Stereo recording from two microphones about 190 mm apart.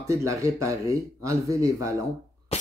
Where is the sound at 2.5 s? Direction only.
35° left (ahead or behind).